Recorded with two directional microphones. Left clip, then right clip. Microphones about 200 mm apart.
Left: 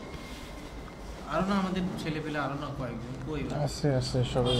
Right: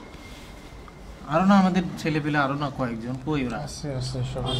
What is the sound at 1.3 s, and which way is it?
A man's voice, 50° right (ahead or behind).